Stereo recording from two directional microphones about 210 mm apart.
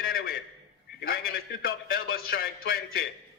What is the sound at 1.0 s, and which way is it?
A man's voice, 45° left (ahead or behind).